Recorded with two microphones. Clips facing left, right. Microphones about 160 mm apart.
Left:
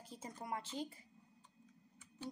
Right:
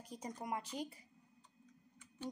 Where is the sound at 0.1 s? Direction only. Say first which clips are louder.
Right 2 dB; 15° right (ahead or behind).